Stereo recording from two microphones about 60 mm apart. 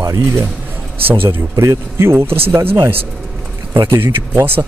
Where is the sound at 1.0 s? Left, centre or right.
Right.